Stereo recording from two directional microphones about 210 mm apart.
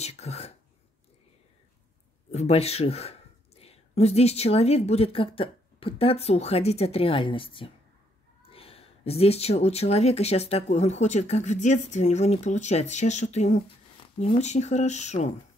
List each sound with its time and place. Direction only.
0.0 s speech: 30° left (ahead or behind)
2.3 s speech: 30° left (ahead or behind)